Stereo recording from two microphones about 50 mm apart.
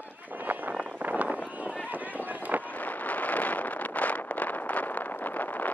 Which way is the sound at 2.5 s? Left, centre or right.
Right.